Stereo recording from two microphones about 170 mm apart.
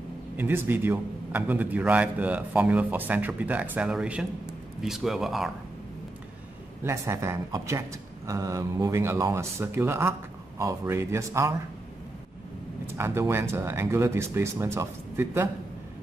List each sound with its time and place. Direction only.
0.4 s a man's voice: 10° right (ahead or behind)
6.8 s a man's voice: 15° right (ahead or behind)
12.9 s a man's voice: 15° right (ahead or behind)